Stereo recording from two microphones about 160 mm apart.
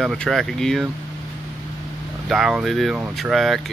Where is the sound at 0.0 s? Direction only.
Centre (ahead or behind).